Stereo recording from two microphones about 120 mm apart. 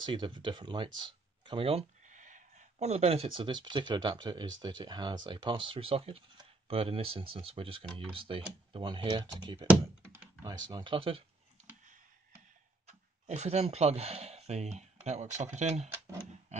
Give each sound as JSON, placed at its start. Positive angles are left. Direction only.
{"t": 0.0, "sound": "speech", "side_deg": -40}
{"t": 2.0, "sound": "speech", "side_deg": -90}
{"t": 11.6, "sound": "computer keyboard", "side_deg": -75}
{"t": 12.8, "sound": "speech", "side_deg": -65}